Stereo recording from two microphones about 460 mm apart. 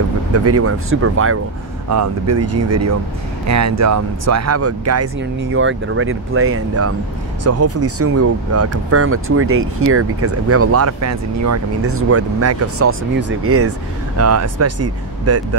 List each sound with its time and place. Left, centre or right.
0.3 s speech: right